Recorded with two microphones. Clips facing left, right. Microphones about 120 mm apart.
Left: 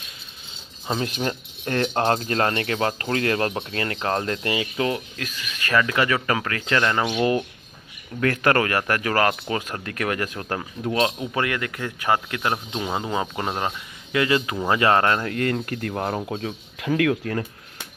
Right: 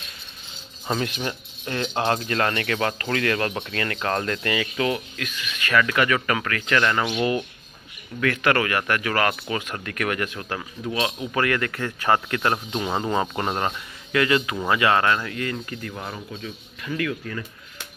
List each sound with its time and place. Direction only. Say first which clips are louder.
1.0 s speech: left 2 dB; 35° left (ahead or behind)
1.6 s speech: left 3 dB; 50° left (ahead or behind)
11.1 s a man's voice: right 2 dB; 20° left (ahead or behind); by 13.7 s 5° left (ahead or behind)
14.1 s speech: even; 25° left (ahead or behind)
15.3 s speech: left 5 dB; 55° left (ahead or behind)